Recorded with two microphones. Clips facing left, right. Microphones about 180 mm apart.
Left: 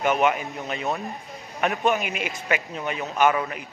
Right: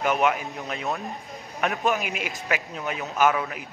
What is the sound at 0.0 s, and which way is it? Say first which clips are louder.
Speech: left 1 dB; centre (ahead or behind).